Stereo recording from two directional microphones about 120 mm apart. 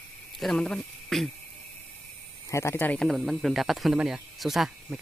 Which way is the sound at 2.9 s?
Centre (ahead or behind).